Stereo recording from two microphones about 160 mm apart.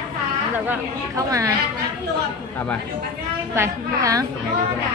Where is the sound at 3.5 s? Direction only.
20° right (ahead or behind).